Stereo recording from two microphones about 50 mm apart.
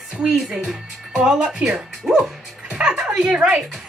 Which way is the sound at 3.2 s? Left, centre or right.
Centre.